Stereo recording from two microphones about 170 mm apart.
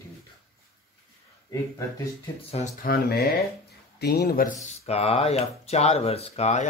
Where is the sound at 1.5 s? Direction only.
20° left (ahead or behind).